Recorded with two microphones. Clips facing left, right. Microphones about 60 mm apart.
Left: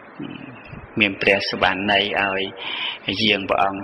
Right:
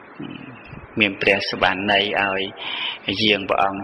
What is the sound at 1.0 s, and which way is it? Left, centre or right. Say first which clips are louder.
Speech: even; centre.